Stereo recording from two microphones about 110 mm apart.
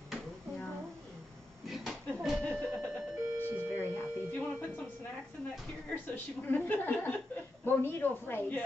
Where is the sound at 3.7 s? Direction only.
20° left (ahead or behind).